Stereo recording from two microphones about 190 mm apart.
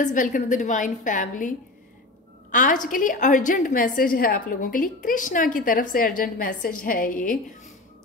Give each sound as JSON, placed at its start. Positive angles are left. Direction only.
{"t": 0.0, "sound": "a woman's voice", "side_deg": 45}
{"t": 2.5, "sound": "a woman's voice", "side_deg": 45}